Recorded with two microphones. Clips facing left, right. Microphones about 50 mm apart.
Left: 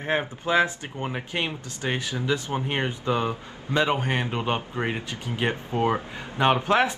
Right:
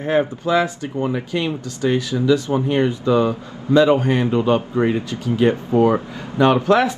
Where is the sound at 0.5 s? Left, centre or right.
Left.